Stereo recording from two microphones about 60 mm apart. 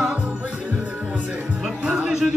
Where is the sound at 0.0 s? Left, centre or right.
Centre.